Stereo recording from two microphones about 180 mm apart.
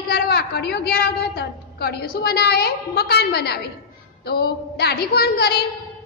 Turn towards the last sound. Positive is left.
turn(degrees=60)  # may be behind; listen again after turning